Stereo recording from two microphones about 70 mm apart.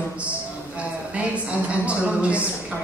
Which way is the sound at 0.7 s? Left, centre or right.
Centre.